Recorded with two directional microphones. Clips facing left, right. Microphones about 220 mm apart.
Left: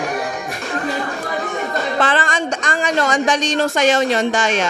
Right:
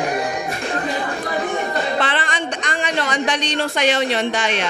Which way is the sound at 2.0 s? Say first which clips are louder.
Left 4 dB; 45° left (ahead or behind).